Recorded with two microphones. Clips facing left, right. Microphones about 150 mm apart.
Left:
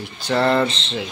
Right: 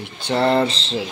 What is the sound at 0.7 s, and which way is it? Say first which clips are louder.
Mantra: right 2 dB; 35° right (ahead or behind).